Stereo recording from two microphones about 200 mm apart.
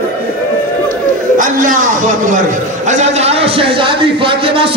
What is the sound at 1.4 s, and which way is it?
A man's voice, 40° right (ahead or behind).